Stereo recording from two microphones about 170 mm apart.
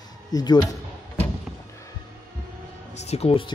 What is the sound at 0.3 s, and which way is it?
Speech, 20° left (ahead or behind).